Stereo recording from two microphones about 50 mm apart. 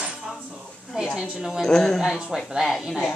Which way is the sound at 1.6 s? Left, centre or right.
Centre.